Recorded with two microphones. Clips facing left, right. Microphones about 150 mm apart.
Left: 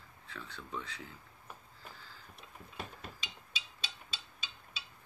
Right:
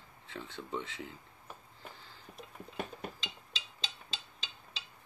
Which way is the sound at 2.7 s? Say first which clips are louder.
Right 6 dB; 55° right (ahead or behind).